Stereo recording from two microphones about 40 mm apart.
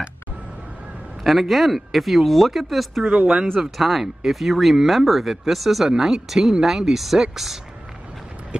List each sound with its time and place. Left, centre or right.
1.2 s speech: centre
3.1 s speech: right
3.7 s speech: centre